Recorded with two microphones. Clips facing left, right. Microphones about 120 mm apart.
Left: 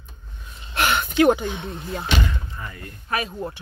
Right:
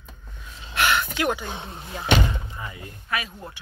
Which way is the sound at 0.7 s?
25° left (ahead or behind).